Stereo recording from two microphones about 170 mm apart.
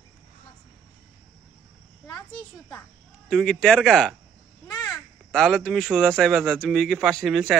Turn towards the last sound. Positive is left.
turn(degrees=0)  # may be behind; listen again after turning